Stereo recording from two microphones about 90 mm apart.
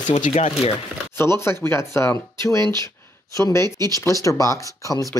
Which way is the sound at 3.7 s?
45° right (ahead or behind).